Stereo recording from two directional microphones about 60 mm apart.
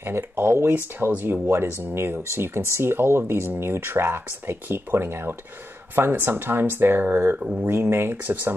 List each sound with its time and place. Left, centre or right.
0.0 s speech: right
7.3 s speech: right
7.7 s speech: right